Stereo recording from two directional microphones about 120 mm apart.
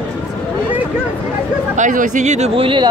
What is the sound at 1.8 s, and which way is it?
Speech, 90° right.